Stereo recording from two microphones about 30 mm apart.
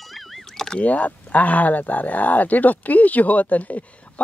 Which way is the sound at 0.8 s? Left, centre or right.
Left.